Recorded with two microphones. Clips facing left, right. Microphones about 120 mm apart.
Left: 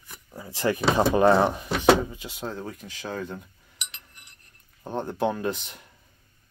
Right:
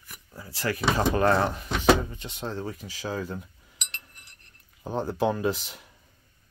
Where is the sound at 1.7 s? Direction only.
5° left (ahead or behind).